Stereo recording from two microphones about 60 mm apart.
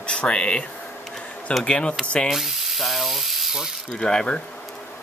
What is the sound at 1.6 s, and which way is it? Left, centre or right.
Speech, centre.